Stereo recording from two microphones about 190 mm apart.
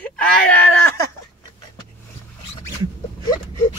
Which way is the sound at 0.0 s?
10° left (ahead or behind).